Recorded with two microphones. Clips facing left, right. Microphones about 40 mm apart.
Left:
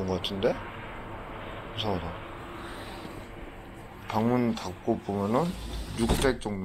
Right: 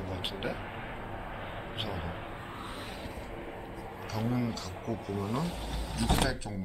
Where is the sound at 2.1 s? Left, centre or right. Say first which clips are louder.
Left 1 dB; centre.